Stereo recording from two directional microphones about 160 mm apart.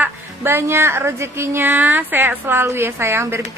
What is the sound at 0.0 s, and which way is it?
Speech, 15° right (ahead or behind).